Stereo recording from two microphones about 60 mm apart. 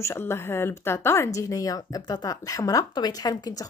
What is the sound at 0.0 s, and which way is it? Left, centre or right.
Speech, left.